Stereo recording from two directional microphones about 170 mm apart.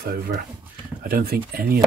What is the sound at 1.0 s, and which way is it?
Speech, 60° right (ahead or behind).